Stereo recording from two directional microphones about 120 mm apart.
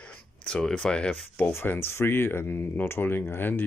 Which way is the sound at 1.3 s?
15° left (ahead or behind).